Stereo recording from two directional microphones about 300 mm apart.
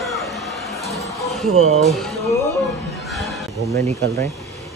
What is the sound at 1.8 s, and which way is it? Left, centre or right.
Speech, centre.